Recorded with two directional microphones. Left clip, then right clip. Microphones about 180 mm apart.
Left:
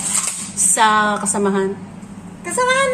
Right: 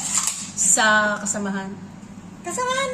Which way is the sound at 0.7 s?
35° left (ahead or behind).